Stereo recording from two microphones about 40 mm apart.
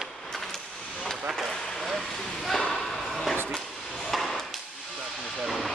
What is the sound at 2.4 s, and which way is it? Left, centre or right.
Whip, centre.